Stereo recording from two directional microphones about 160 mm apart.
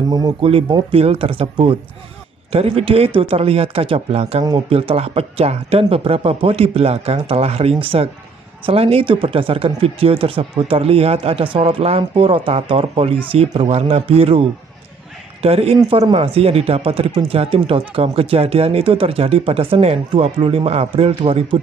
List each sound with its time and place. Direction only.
0.1 s speech: 25° right (ahead or behind)
15.4 s speech: 35° right (ahead or behind)
15.8 s speech: 25° right (ahead or behind)